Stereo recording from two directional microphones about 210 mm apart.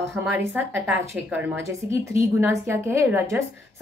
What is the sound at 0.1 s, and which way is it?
A woman's voice, 10° right (ahead or behind).